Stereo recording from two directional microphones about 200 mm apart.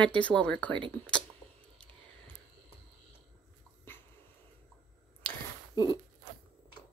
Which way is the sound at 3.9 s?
10° left (ahead or behind).